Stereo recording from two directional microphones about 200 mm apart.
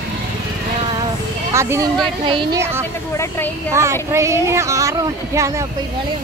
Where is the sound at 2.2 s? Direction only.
25° right (ahead or behind).